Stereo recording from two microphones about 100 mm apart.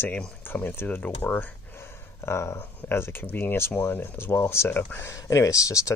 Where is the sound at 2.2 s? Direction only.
25° left (ahead or behind).